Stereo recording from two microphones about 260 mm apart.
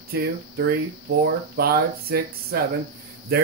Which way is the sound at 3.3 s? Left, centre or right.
Right.